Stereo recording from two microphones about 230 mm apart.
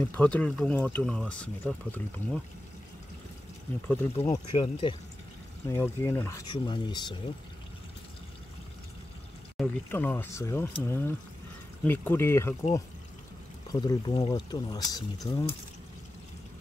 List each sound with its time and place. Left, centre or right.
0.0 s speech: centre
3.8 s speech: centre
4.6 s speech: left
5.7 s speech: centre
9.6 s speech: centre
13.7 s speech: centre